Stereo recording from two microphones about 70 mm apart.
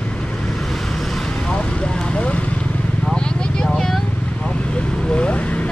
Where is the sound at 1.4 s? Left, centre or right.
Centre.